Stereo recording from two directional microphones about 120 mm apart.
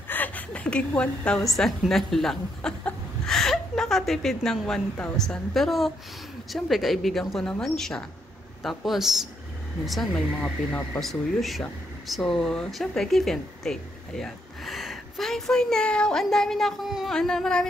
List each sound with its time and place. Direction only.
0.1 s a woman's voice: 15° left (ahead or behind)